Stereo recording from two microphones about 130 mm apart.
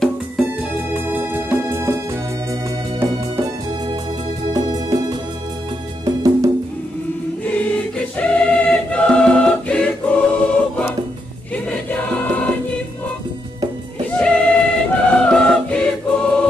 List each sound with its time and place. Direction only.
0.9 s music: 15° right (ahead or behind)
4.5 s music: 30° right (ahead or behind)
6.0 s music: 25° right (ahead or behind)
7.4 s choir: 10° left (ahead or behind)
11.5 s music: 10° left (ahead or behind)
14.1 s music: 10° left (ahead or behind)